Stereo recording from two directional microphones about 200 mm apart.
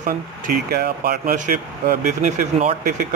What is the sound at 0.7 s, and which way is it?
Speech, 50° right (ahead or behind).